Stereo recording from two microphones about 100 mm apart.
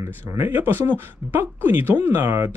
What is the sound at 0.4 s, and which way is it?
Speech, 20° right (ahead or behind).